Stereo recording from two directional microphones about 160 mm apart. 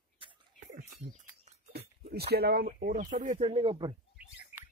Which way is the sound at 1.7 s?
85° right.